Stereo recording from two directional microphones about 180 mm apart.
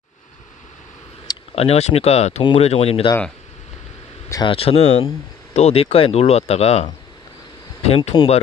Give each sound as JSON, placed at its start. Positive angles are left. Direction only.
{"t": 1.5, "sound": "speech", "side_deg": 35}
{"t": 4.3, "sound": "speech", "side_deg": 25}